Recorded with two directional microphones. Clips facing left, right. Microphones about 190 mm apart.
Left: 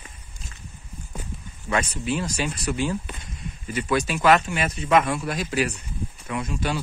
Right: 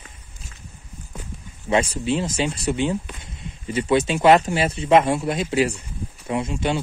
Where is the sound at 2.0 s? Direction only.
25° right (ahead or behind).